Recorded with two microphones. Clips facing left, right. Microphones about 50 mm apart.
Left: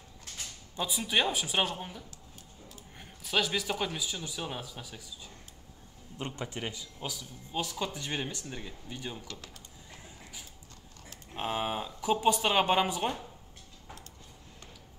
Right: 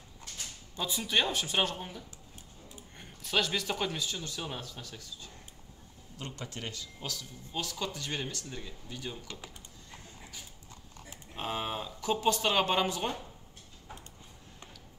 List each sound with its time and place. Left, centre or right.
0.7 s speech: centre
6.1 s speech: left
9.3 s speech: centre
11.3 s speech: centre